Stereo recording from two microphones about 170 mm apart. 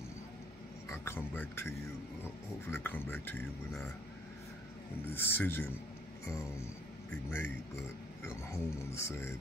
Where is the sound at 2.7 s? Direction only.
10° left (ahead or behind).